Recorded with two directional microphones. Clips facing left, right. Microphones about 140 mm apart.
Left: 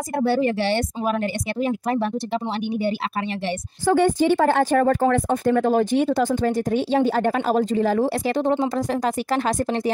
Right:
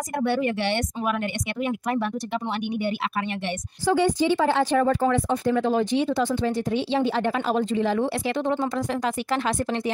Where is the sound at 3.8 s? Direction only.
50° left (ahead or behind).